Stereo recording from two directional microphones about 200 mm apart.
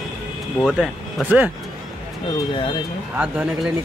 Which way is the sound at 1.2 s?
10° right (ahead or behind).